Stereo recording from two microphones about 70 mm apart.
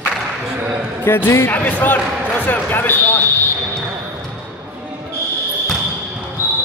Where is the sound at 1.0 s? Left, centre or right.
Left.